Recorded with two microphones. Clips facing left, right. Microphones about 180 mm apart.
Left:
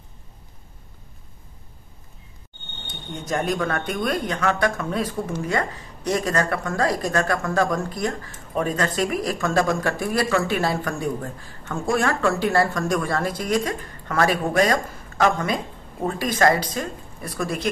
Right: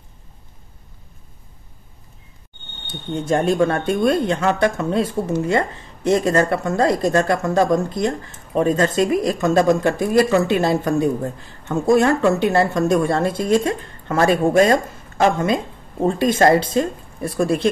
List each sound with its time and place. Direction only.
2.9 s speech: 30° right (ahead or behind)